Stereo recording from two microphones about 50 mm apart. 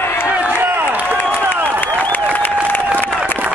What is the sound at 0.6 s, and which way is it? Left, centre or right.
Run, right.